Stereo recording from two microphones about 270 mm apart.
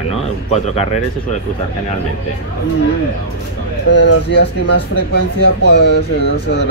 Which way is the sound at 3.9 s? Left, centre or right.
Left.